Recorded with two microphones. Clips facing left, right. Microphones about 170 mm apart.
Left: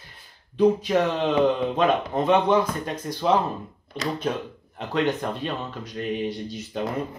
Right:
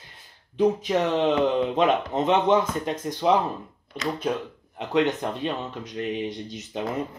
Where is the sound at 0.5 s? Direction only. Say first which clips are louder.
Left 2 dB; 20° right (ahead or behind).